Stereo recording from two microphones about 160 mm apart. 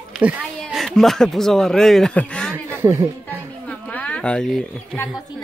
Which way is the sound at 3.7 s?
10° left (ahead or behind).